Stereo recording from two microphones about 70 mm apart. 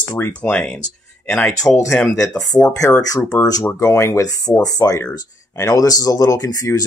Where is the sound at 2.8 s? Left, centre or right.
Left.